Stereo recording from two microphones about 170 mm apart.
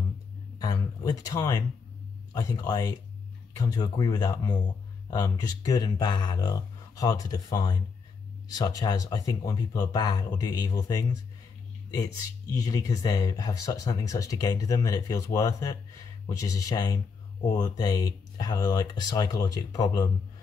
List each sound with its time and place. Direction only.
0.6 s speech: 25° left (ahead or behind)
12.5 s speech: 20° left (ahead or behind)